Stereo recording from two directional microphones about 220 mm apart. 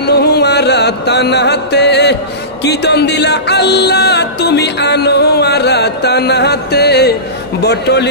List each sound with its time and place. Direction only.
0.0 s mantra: 50° left (ahead or behind)
2.6 s music: 50° left (ahead or behind)